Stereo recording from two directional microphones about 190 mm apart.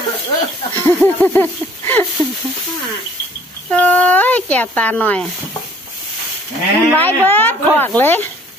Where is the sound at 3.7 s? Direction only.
10° left (ahead or behind).